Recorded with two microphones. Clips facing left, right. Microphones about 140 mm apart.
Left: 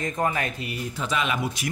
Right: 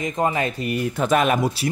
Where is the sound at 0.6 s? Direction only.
55° right (ahead or behind).